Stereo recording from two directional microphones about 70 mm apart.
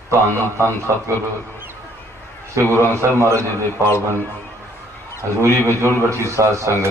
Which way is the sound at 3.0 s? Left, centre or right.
Right.